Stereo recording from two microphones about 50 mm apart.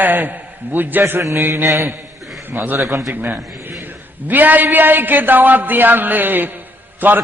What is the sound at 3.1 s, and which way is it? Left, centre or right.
A man's voice, right.